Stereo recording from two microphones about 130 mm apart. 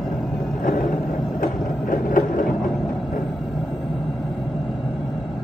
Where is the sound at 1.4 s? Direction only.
90° left.